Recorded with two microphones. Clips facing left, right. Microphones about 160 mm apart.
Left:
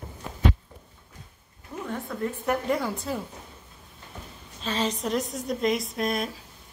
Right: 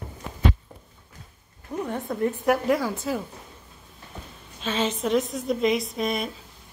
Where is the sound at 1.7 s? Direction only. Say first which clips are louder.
Right 6 dB; 15° right (ahead or behind).